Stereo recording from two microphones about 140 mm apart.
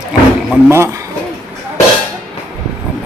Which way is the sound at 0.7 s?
20° right (ahead or behind).